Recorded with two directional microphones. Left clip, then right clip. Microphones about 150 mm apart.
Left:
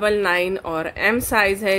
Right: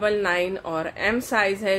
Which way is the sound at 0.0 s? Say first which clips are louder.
Left 3 dB; 30° left (ahead or behind).